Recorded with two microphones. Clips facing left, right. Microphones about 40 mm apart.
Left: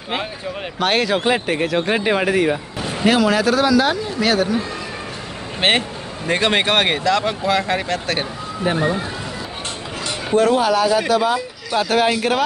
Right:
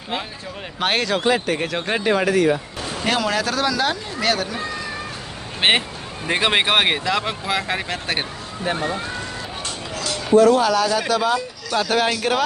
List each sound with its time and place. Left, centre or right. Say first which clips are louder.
0.7 s speech: left 3 dB; centre
1.0 s speech: left 2 dB; centre
1.3 s speech: left 1 dB; left
1.6 s speech: left 4 dB; centre
2.0 s speech: right 3 dB; centre
3.1 s speech: left 6 dB; centre
5.6 s speech: left 1 dB; centre
8.6 s speech: left 4 dB; centre
10.5 s speech: left 2 dB; centre